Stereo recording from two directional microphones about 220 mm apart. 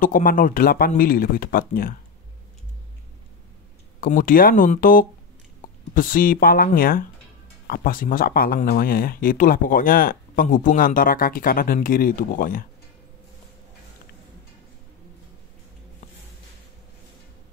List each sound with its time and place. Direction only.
0.0 s speech: 40° left (ahead or behind)
4.0 s speech: 40° left (ahead or behind)